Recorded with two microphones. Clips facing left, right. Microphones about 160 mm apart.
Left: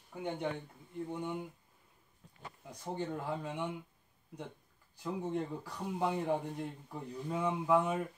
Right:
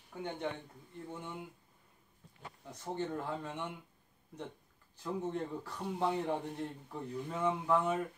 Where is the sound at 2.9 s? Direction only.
10° left (ahead or behind).